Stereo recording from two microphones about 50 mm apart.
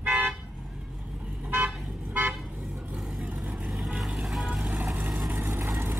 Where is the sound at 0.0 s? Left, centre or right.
Right.